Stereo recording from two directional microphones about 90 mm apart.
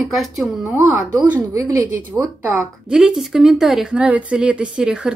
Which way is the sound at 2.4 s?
20° right (ahead or behind).